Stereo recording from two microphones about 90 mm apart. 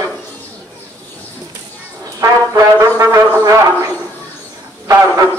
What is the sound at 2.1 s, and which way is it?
Brass instrument, 40° right (ahead or behind).